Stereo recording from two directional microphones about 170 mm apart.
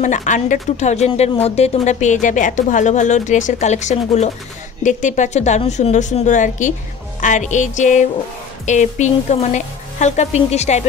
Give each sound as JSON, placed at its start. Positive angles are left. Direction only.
{"t": 0.0, "sound": "speech", "side_deg": 45}